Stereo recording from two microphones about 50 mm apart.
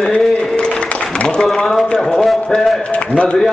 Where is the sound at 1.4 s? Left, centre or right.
Centre.